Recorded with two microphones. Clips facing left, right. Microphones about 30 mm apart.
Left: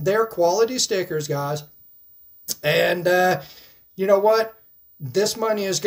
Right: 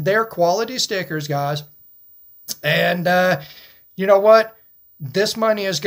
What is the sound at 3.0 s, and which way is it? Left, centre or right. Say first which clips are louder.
Speech: right 2 dB; right.